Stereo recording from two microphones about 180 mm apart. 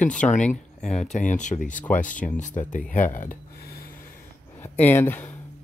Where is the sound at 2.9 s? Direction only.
45° left (ahead or behind).